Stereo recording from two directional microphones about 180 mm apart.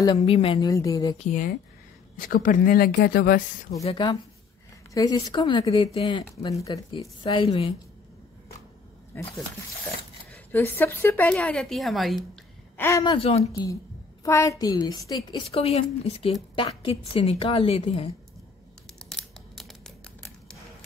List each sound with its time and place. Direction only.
0.2 s a woman's voice: 30° left (ahead or behind)
0.7 s a woman's voice: 20° left (ahead or behind)
1.1 s a woman's voice: 40° left (ahead or behind)
2.1 s speech: 50° left (ahead or behind)
3.8 s a woman's voice: 30° left (ahead or behind)
10.3 s a woman's voice: 10° left (ahead or behind)
12.7 s speech: 15° left (ahead or behind)
13.0 s a woman's voice: 30° left (ahead or behind)
13.4 s a woman's voice: 20° left (ahead or behind); by 18.0 s 35° left (ahead or behind)
18.9 s scissors: centre (ahead or behind)